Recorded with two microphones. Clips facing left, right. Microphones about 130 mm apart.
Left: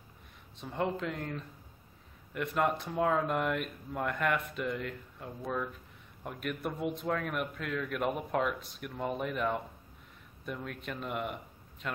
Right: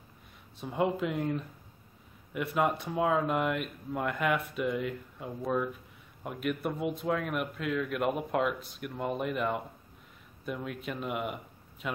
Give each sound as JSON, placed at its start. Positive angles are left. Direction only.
{"t": 0.6, "sound": "speech", "side_deg": -10}